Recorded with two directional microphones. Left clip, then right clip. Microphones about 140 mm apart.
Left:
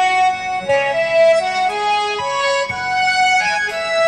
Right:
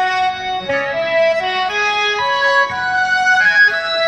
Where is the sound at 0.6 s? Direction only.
40° left (ahead or behind).